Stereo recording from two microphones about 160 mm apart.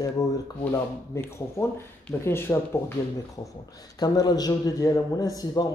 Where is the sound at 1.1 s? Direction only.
15° left (ahead or behind).